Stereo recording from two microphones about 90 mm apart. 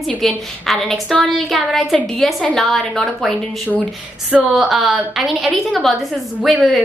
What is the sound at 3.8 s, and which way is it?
Speech, 15° right (ahead or behind).